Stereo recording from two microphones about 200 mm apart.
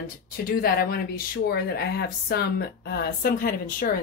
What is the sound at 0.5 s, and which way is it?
Speech, 50° left (ahead or behind).